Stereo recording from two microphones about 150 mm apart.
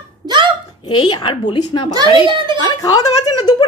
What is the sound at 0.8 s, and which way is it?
A woman's voice, 30° left (ahead or behind).